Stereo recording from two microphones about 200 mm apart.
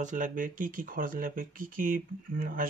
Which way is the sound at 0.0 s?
40° right (ahead or behind).